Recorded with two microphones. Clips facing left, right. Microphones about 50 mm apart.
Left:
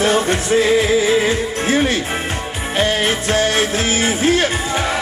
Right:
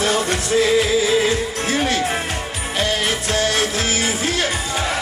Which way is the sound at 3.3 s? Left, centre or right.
Left.